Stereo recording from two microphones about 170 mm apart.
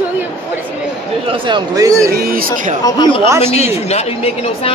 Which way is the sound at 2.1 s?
60° right (ahead or behind).